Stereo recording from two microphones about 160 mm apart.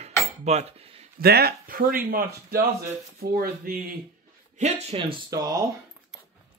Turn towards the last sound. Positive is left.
turn(degrees=-20)  # may be behind; listen again after turning